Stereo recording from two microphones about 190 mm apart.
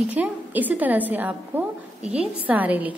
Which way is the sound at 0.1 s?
10° right (ahead or behind).